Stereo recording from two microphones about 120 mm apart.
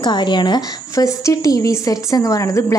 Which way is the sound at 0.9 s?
25° left (ahead or behind).